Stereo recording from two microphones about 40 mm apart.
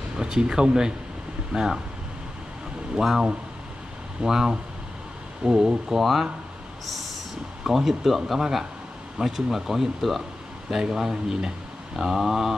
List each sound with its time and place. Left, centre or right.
0.2 s speech: right
3.0 s speech: centre
7.6 s speech: centre